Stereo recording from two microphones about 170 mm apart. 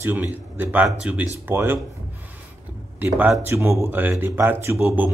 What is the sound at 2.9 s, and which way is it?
Speech, 10° right (ahead or behind).